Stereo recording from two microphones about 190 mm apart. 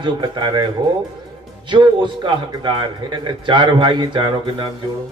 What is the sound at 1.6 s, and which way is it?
A man's voice, 25° right (ahead or behind).